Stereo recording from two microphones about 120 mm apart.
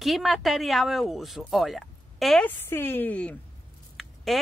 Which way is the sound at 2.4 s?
20° left (ahead or behind).